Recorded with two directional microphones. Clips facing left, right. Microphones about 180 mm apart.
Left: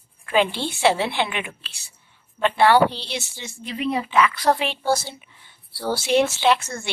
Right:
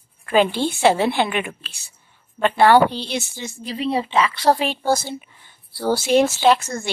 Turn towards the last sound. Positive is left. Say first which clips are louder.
# right 3 dB
turn(degrees=-40)  # may be behind; listen again after turning